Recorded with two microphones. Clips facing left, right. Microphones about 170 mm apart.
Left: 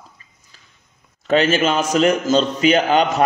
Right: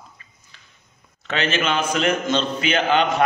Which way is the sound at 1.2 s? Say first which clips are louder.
Left 7 dB; 40° left (ahead or behind).